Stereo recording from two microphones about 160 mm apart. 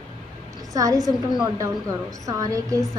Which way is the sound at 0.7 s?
20° right (ahead or behind).